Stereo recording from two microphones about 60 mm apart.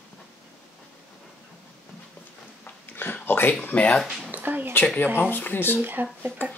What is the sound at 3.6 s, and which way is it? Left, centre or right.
Speech, left.